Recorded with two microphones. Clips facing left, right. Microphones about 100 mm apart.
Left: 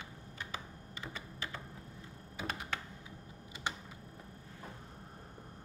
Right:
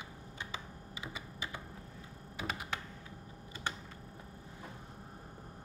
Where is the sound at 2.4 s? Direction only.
5° right (ahead or behind).